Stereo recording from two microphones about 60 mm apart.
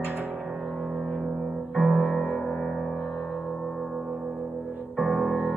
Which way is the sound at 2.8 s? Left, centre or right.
Centre.